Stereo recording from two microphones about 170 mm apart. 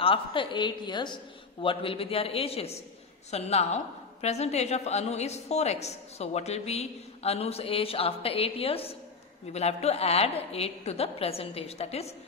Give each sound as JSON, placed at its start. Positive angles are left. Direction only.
{"t": 0.0, "sound": "a woman's voice", "side_deg": 30}